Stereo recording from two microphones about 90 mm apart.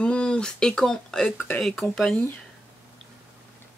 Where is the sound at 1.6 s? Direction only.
5° left (ahead or behind).